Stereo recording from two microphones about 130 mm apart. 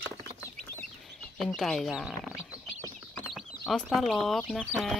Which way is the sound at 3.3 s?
Centre (ahead or behind).